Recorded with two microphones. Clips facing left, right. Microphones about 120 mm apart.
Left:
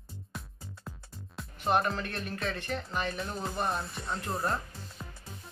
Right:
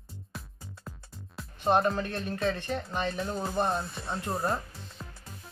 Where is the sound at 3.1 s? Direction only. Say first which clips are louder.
Right 3 dB; centre (ahead or behind).